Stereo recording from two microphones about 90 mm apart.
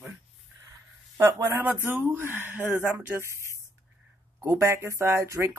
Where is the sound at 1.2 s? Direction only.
25° right (ahead or behind).